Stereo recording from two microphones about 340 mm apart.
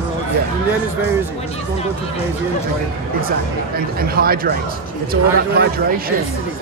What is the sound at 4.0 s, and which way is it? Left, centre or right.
Speech, right.